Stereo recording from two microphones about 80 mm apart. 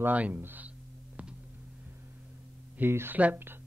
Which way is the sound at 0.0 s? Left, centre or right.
Right.